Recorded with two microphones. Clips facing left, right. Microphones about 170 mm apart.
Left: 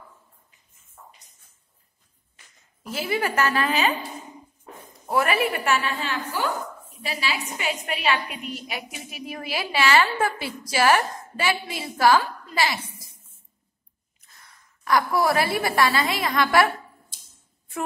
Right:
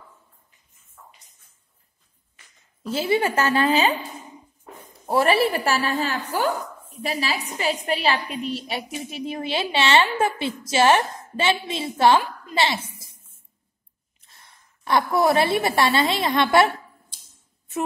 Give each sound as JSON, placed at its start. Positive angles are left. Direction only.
{"t": 2.8, "sound": "a woman's voice", "side_deg": -30}
{"t": 5.0, "sound": "a woman's voice", "side_deg": -30}
{"t": 14.2, "sound": "a woman's voice", "side_deg": -25}